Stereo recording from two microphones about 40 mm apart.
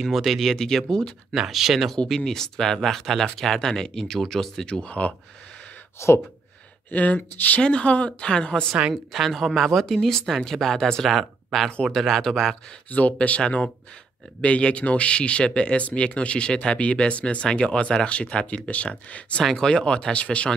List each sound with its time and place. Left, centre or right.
0.0 s speech: centre
1.5 s speech: centre
2.0 s speech: centre
4.8 s speech: left
6.9 s speech: left
7.6 s speech: left
8.3 s speech: left
8.9 s speech: centre
11.1 s speech: centre
12.9 s speech: left
14.4 s speech: left
19.5 s speech: centre
19.8 s speech: left